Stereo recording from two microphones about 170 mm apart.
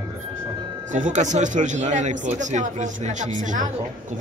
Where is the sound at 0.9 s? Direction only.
45° right (ahead or behind).